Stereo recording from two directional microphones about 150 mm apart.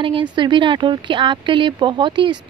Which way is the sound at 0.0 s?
35° right (ahead or behind).